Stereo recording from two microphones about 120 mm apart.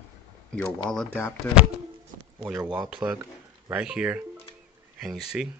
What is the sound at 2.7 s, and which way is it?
Speech, 10° right (ahead or behind).